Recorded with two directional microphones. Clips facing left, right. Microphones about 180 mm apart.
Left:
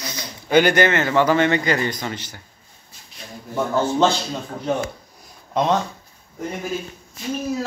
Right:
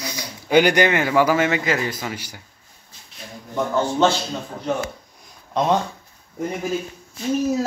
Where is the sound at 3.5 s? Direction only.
5° left (ahead or behind).